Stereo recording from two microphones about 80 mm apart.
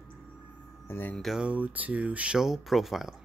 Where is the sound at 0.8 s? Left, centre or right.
Left.